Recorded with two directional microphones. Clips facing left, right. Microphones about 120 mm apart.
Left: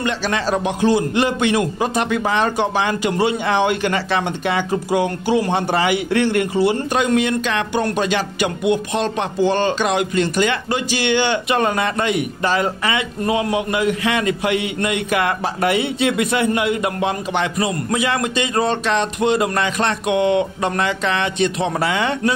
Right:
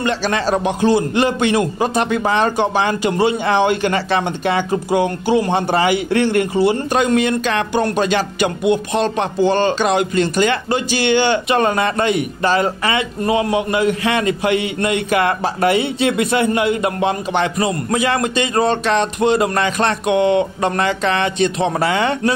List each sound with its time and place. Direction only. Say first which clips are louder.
0.0 s a man's voice: right 2 dB; 40° right (ahead or behind)